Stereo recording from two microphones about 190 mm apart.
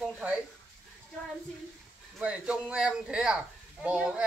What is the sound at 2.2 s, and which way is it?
Speech, 5° right (ahead or behind).